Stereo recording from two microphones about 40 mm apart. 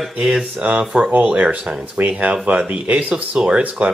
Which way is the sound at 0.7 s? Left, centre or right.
Right.